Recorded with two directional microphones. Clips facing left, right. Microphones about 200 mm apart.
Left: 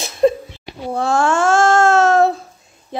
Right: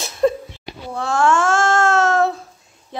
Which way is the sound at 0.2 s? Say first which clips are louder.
Left 3 dB; 20° left (ahead or behind).